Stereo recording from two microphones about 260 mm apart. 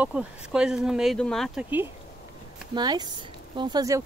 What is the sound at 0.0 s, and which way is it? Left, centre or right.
Speech, centre.